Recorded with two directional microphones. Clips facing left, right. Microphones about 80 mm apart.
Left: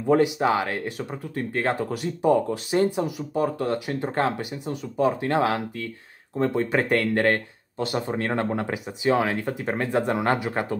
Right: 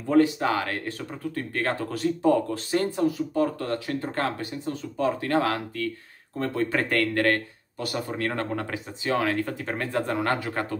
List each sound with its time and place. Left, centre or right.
0.0 s speech: left